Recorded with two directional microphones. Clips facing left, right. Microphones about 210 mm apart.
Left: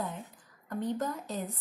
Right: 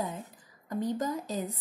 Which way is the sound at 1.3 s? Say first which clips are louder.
Right 3 dB; 40° right (ahead or behind).